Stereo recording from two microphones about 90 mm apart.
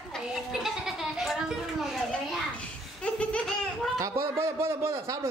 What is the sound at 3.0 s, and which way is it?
Laughter, 15° left (ahead or behind).